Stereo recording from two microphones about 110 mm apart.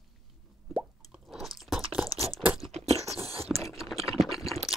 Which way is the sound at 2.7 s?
75° right (ahead or behind).